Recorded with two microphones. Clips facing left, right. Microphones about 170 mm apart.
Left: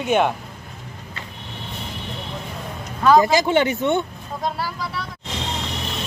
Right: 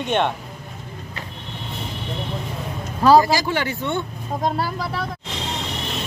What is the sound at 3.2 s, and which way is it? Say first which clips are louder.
Speech: left 4 dB; 20° left (ahead or behind).